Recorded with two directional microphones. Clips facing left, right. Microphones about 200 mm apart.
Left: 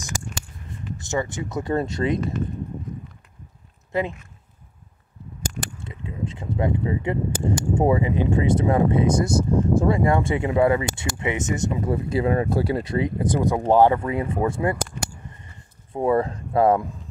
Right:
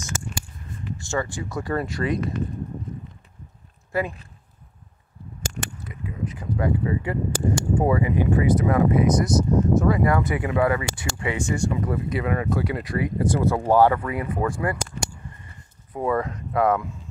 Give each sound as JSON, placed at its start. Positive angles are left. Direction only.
{"t": 0.9, "sound": "speech", "side_deg": 20}
{"t": 3.9, "sound": "speech", "side_deg": 20}
{"t": 5.9, "sound": "speech", "side_deg": 25}
{"t": 15.9, "sound": "speech", "side_deg": 30}